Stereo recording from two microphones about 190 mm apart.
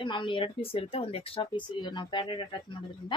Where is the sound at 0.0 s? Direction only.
25° left (ahead or behind).